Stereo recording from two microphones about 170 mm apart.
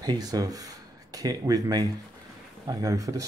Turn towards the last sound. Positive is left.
turn(degrees=-20)  # may be behind; listen again after turning